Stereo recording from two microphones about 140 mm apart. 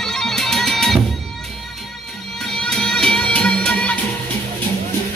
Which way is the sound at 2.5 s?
5° left (ahead or behind).